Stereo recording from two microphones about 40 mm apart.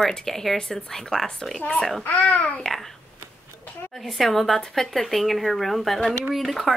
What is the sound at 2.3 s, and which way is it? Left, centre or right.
Babbling, left.